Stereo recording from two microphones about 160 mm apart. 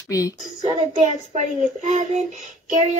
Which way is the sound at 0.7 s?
50° right (ahead or behind).